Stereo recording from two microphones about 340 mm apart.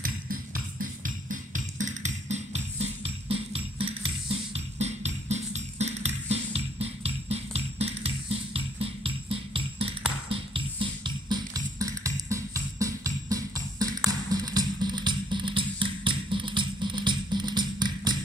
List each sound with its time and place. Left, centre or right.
0.0 s music: right